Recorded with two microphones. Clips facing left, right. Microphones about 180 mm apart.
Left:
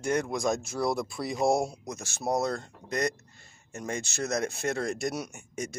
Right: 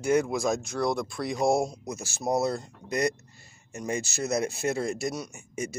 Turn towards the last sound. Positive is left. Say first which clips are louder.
# right 2 dB
turn(degrees=-5)  # may be behind; listen again after turning